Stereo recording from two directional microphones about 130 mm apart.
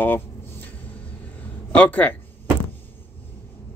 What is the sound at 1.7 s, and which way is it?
Speech, 10° left (ahead or behind).